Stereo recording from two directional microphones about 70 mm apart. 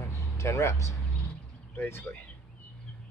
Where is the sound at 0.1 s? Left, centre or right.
Left.